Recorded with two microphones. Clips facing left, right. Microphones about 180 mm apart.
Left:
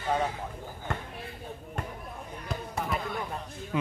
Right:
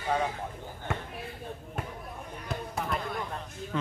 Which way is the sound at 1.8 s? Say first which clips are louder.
Left 1 dB; 5° right (ahead or behind).